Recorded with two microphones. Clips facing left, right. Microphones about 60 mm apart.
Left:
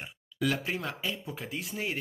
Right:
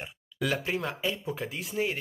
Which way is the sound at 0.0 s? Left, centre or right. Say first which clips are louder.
Left 1 dB; centre.